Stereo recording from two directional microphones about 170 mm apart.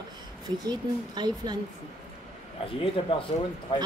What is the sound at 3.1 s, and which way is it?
Speech, 30° left (ahead or behind).